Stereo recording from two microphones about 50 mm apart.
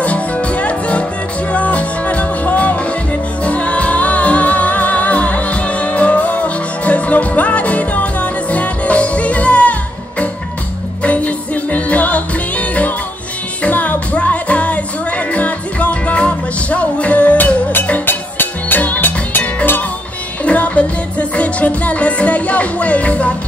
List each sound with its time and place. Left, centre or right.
0.0 s music: left
11.1 s music: left
18.0 s music: left
20.4 s music: left